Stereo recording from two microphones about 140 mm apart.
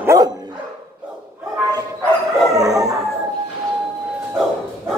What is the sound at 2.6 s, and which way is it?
Howl, 25° right (ahead or behind).